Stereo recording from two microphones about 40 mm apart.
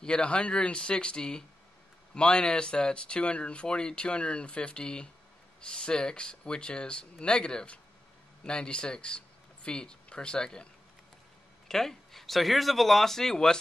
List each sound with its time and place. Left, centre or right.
0.0 s speech: left
11.6 s speech: centre